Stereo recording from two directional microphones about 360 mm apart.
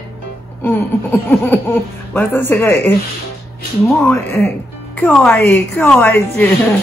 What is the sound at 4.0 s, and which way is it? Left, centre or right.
A woman's voice, centre.